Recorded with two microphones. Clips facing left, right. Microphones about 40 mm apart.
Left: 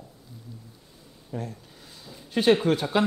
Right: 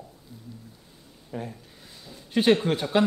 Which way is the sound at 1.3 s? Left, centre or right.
Centre.